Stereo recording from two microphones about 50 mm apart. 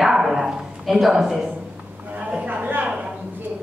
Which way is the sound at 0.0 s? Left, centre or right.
Centre.